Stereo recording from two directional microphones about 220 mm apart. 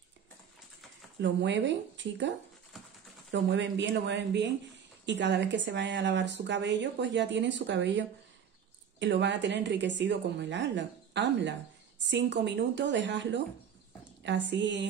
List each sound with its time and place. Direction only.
1.2 s a woman's voice: 55° right (ahead or behind)